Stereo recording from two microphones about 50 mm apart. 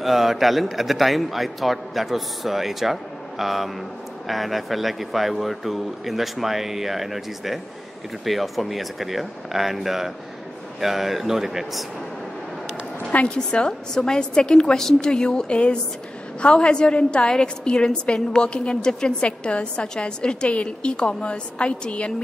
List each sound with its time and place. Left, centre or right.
0.0 s a man's voice: centre
13.1 s a woman's voice: left